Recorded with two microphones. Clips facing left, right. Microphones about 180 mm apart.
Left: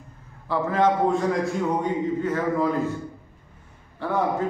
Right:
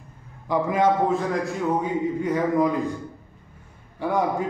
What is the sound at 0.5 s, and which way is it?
A man's voice, 15° right (ahead or behind).